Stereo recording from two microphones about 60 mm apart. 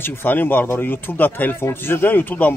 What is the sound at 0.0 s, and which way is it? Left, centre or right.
Speech, left.